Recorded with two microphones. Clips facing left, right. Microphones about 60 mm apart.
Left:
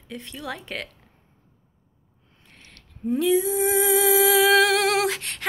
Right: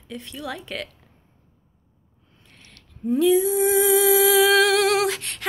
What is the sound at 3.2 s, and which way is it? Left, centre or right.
Humming, left.